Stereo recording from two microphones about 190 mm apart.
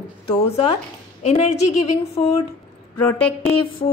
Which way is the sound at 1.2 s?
35° left (ahead or behind).